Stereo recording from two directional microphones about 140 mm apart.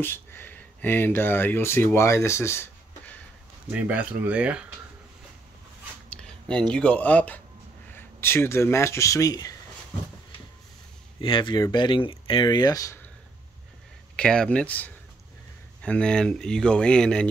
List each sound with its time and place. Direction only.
0.0 s speech: 15° left (ahead or behind)
3.7 s speech: 10° right (ahead or behind)
6.5 s speech: 5° left (ahead or behind); by 9.6 s 25° left (ahead or behind)
11.1 s speech: 35° left (ahead or behind)
14.1 s speech: 5° left (ahead or behind)